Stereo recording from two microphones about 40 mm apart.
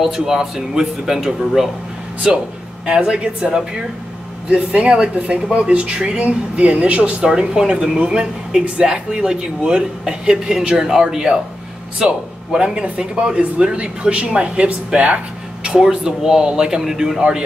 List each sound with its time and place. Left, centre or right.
0.0 s speech: centre
4.5 s speech: right
7.2 s speech: centre